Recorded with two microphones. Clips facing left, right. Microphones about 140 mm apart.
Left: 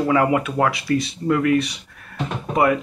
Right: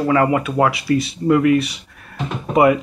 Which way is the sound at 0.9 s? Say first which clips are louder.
Right 4 dB; 15° right (ahead or behind).